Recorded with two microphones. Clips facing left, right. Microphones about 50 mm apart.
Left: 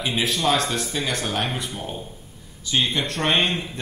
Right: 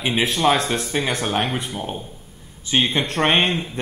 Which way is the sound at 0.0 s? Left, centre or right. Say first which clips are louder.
Right 4 dB; right.